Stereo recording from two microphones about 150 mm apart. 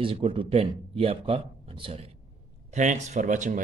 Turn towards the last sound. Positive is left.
turn(degrees=-55)  # may be behind; listen again after turning